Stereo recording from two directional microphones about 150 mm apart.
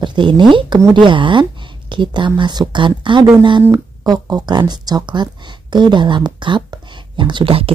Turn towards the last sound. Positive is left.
turn(degrees=-35)  # may be behind; listen again after turning